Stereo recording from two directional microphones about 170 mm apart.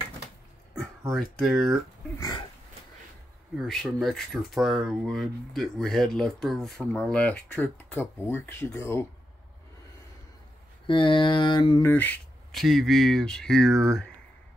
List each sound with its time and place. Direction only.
1.1 s speech: centre (ahead or behind)
2.1 s a sound: 25° left (ahead or behind)
3.5 s speech: centre (ahead or behind)
10.9 s mantra: 30° left (ahead or behind)
11.8 s speech: 10° left (ahead or behind)
12.5 s speech: centre (ahead or behind)